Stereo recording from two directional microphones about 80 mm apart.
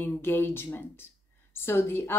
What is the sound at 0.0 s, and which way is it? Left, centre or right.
Speech, left.